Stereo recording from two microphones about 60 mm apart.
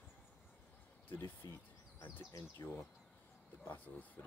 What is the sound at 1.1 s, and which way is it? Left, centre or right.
Speech, left.